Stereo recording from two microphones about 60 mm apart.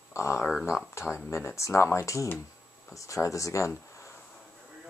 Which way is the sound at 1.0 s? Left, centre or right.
Left.